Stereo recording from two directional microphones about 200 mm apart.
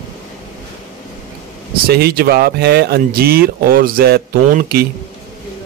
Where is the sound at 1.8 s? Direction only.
50° right (ahead or behind).